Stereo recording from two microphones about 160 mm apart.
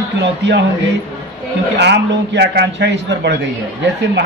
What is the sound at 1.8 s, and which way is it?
A man's voice, 90° right.